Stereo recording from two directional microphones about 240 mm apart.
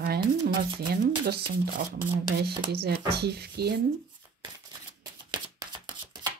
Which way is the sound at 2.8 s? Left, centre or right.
Right.